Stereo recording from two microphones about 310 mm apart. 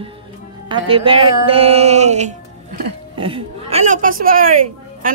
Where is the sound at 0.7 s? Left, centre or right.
Centre.